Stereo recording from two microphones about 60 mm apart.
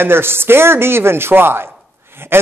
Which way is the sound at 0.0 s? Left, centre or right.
Right.